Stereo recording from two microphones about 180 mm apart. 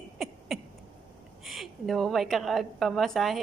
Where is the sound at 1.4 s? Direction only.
Centre (ahead or behind).